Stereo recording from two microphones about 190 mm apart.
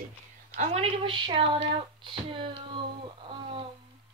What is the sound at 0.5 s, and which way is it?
Speech, 35° right (ahead or behind).